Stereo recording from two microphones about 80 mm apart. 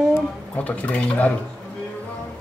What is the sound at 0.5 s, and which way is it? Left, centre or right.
Speech, centre.